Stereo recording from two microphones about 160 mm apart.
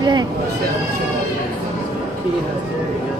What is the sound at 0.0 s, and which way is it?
Bleat, 25° right (ahead or behind).